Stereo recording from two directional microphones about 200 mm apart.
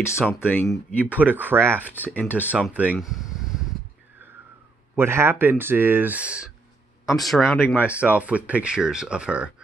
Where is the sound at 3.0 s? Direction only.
Centre (ahead or behind).